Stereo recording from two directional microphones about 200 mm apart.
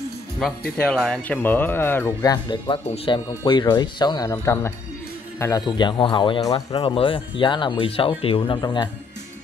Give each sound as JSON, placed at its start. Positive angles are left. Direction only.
{"t": 0.4, "sound": "speech", "side_deg": 5}